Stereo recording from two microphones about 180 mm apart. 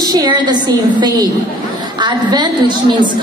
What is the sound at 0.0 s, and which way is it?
Speech, 20° right (ahead or behind).